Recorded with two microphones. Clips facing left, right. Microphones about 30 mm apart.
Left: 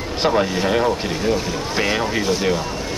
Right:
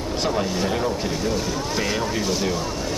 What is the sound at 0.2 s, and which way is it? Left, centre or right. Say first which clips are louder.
Speech: left 6 dB; left.